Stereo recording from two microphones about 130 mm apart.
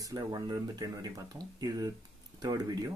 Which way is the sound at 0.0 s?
30° right (ahead or behind).